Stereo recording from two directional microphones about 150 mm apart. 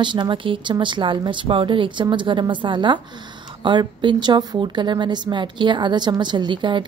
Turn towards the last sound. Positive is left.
turn(degrees=-30)  # may be behind; listen again after turning